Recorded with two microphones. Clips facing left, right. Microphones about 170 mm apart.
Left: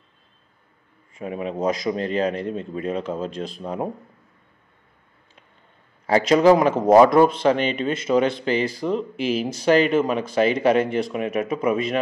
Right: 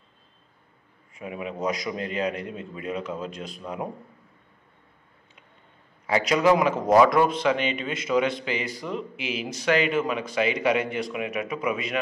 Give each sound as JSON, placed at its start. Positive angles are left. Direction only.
{"t": 1.1, "sound": "a man's voice", "side_deg": 35}
{"t": 6.0, "sound": "speech", "side_deg": 35}
{"t": 11.1, "sound": "speech", "side_deg": 45}